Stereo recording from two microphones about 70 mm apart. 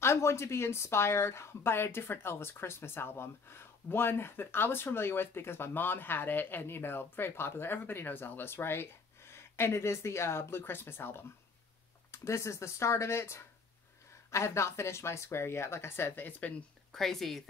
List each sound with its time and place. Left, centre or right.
0.0 s speech: left
12.1 s speech: left
16.9 s speech: centre